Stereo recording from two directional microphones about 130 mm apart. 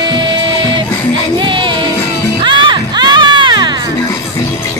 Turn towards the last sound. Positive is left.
turn(degrees=-35)  # may be behind; listen again after turning